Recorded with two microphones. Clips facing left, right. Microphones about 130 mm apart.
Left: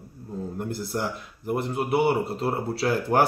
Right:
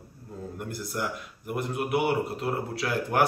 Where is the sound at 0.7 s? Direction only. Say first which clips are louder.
Left 2 dB; 30° left (ahead or behind).